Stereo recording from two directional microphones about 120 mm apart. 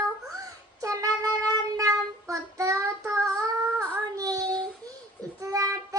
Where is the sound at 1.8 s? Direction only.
30° right (ahead or behind).